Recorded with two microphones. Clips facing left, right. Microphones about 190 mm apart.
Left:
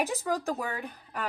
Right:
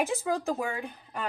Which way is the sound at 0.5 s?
10° right (ahead or behind).